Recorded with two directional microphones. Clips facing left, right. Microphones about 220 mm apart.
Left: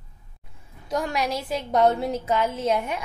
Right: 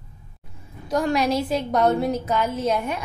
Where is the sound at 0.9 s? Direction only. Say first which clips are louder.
Right 5 dB; 10° left (ahead or behind).